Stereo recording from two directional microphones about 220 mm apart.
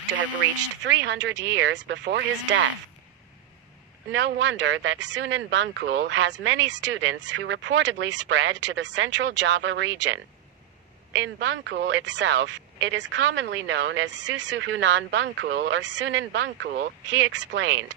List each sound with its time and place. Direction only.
0.2 s speech: 55° right (ahead or behind)
4.1 s speech: 55° right (ahead or behind)